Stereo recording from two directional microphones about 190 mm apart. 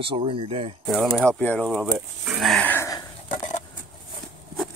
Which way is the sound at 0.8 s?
Centre (ahead or behind).